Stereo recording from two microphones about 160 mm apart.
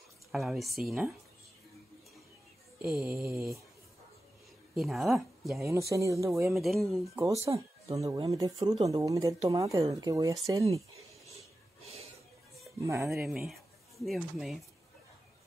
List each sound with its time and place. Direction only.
0.3 s a woman's voice: centre (ahead or behind)
2.9 s mantra: 15° right (ahead or behind)
3.3 s speech: 20° right (ahead or behind)
4.7 s a woman's voice: centre (ahead or behind)
5.6 s speech: 20° right (ahead or behind)
6.5 s a woman's voice: centre (ahead or behind)
7.5 s speech: 25° right (ahead or behind)
11.8 s a sound: 40° right (ahead or behind)
12.8 s speech: 20° right (ahead or behind)
13.2 s speech: centre (ahead or behind)